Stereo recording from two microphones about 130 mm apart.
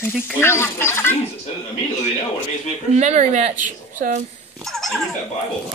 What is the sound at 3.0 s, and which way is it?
Speech, 60° right (ahead or behind).